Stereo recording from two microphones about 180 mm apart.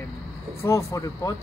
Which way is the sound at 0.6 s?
20° left (ahead or behind).